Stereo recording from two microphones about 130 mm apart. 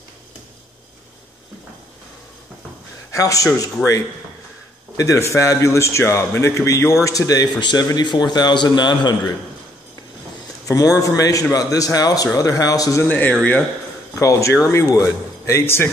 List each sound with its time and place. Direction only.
3.1 s a man's voice: 25° left (ahead or behind)
4.9 s a man's voice: 25° left (ahead or behind)
10.7 s a man's voice: 25° left (ahead or behind)
13.1 s speech: 10° left (ahead or behind)
14.1 s a man's voice: 25° left (ahead or behind)